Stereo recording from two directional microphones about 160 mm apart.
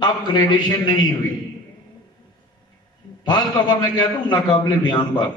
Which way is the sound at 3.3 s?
25° left (ahead or behind).